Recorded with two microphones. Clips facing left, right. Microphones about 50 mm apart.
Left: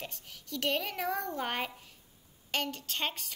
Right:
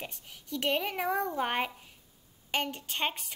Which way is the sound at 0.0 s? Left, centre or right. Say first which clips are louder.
Right 1 dB; centre.